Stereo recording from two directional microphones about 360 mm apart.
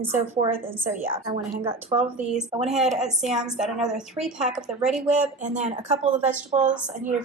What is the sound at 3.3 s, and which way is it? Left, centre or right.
A woman's voice, centre.